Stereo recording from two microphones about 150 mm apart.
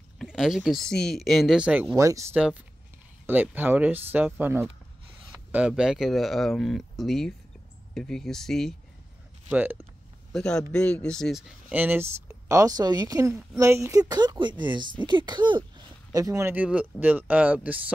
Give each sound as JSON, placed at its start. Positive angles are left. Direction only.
{"t": 0.2, "sound": "speech", "side_deg": -5}
{"t": 2.0, "sound": "speech", "side_deg": -20}
{"t": 9.5, "sound": "speech", "side_deg": -10}
{"t": 10.3, "sound": "speech", "side_deg": 5}
{"t": 11.7, "sound": "speech", "side_deg": -15}